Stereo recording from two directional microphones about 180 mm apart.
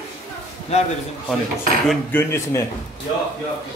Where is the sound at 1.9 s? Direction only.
10° left (ahead or behind).